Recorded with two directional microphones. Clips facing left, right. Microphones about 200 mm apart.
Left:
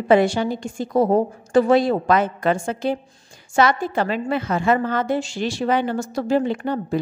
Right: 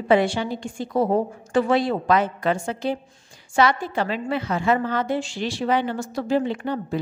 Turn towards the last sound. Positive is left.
turn(degrees=45)  # may be behind; listen again after turning